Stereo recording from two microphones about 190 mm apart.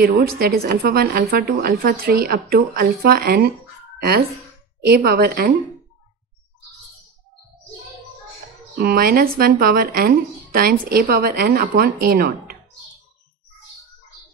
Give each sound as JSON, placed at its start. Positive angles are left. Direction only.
{"t": 0.0, "sound": "a woman's voice", "side_deg": -55}
{"t": 4.8, "sound": "a woman's voice", "side_deg": -55}
{"t": 8.7, "sound": "a woman's voice", "side_deg": -50}